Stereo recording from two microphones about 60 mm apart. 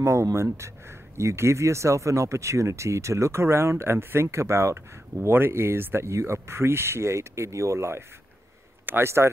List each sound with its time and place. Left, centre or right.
0.0 s speech: right
5.3 s speech: right